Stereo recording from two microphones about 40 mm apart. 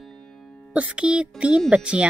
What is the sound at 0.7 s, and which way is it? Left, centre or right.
Speech, right.